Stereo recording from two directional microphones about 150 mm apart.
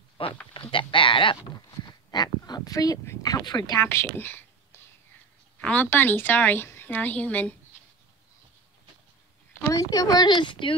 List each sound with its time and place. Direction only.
0.5 s a woman's voice: 35° left (ahead or behind); by 7.5 s 10° left (ahead or behind)
9.6 s speech: 20° left (ahead or behind)